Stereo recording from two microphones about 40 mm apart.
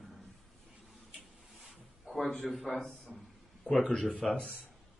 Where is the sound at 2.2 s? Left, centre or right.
Centre.